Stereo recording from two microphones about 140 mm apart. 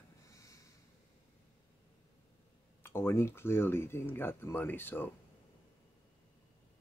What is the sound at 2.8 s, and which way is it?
Speech, 15° left (ahead or behind).